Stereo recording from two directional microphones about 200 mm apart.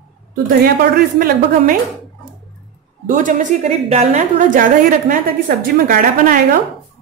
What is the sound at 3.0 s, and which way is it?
A woman's voice, 40° right (ahead or behind).